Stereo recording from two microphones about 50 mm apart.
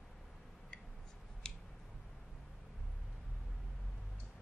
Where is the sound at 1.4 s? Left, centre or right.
Centre.